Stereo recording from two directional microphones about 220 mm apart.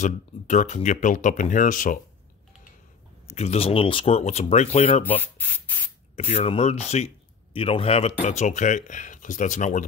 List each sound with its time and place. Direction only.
0.0 s speech: 35° left (ahead or behind)
3.3 s speech: 30° left (ahead or behind)
5.0 s speech: 10° left (ahead or behind)
6.1 s speech: 30° left (ahead or behind)